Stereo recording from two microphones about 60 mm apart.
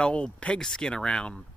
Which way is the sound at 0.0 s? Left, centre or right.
Centre.